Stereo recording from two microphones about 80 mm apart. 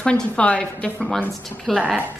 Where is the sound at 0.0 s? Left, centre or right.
Centre.